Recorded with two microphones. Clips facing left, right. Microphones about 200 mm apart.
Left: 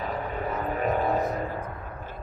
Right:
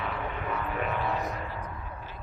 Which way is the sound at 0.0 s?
40° left (ahead or behind).